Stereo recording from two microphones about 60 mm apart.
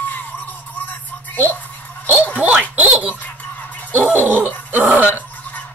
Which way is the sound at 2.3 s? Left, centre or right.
Right.